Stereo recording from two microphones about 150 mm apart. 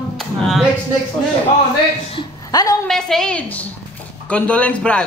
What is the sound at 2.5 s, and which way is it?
Speech, 25° left (ahead or behind).